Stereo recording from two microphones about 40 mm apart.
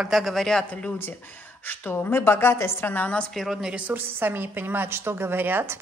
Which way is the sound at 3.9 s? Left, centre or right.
Right.